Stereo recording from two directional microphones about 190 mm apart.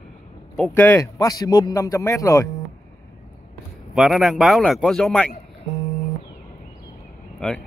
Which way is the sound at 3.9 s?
Centre (ahead or behind).